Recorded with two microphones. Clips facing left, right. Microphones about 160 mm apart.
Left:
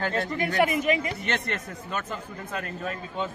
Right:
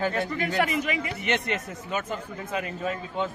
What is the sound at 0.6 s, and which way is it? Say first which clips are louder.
Speech: left 4 dB; 45° left (ahead or behind).